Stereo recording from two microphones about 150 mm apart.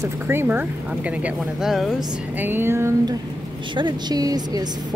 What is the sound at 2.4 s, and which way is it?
Speech, 15° right (ahead or behind).